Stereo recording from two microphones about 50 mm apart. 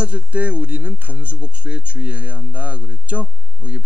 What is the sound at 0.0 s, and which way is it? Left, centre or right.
Speech, right.